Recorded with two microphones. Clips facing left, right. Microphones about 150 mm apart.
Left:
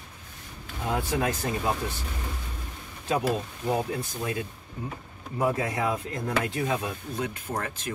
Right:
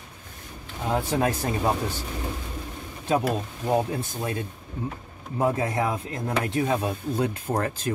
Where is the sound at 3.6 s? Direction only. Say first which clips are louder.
Right 4 dB; 25° right (ahead or behind).